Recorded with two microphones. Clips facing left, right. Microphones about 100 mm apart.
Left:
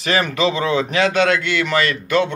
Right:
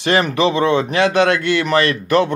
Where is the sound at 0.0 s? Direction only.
30° right (ahead or behind).